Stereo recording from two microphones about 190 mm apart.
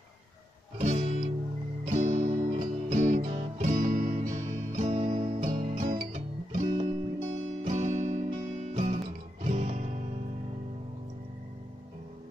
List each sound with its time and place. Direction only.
0.7 s music: 35° right (ahead or behind)